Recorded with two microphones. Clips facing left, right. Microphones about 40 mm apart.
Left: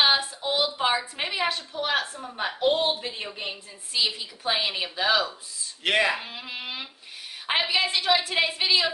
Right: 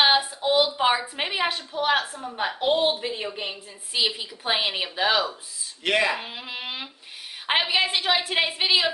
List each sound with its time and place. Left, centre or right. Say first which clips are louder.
0.0 s a sound: right 2 dB; centre
2.1 s a woman's voice: right 2 dB; centre
3.3 s a woman's voice: right 2 dB; centre
5.9 s speech: even; centre
6.1 s a woman's voice: right 1 dB; centre